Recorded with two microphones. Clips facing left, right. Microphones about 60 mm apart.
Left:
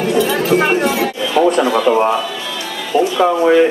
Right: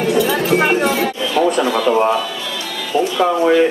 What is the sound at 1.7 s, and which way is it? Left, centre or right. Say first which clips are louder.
Speech: left 1 dB; centre.